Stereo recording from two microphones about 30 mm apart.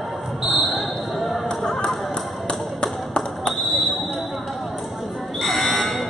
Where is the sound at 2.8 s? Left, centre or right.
Left.